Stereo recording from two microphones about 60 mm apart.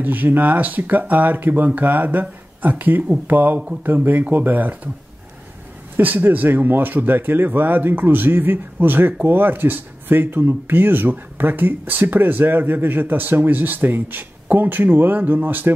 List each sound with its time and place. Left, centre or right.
0.0 s speech: right
5.9 s speech: right